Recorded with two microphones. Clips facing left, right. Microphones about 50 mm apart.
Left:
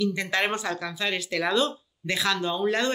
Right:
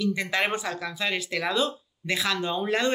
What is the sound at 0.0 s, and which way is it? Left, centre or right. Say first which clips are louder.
Speech: even; centre.